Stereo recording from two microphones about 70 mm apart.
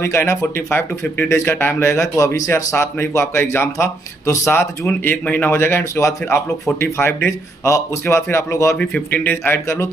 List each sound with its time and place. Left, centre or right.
0.0 s speech: left
1.0 s speech: left
2.1 s speech: left
2.7 s speech: left
3.7 s speech: left
4.5 s speech: left
9.1 s speech: left